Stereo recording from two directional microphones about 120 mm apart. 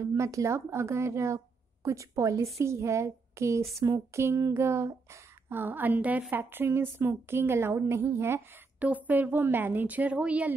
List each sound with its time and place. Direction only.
0.0 s a woman's voice: 25° right (ahead or behind); by 10.5 s 10° right (ahead or behind)